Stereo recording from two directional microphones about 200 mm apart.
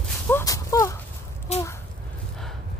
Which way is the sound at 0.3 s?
15° left (ahead or behind).